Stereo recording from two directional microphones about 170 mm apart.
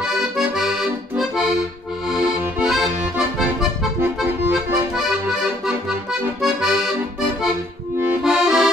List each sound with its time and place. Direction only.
0.0 s accordion: 5° right (ahead or behind)